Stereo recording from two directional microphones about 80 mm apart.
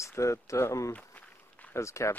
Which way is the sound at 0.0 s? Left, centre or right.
Left.